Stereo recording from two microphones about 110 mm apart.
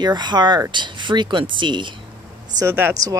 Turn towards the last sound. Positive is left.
turn(degrees=-25)  # may be behind; listen again after turning